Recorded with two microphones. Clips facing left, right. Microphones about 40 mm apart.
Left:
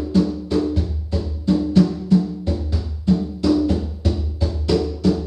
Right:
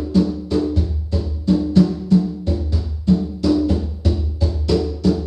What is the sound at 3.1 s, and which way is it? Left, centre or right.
Music, centre.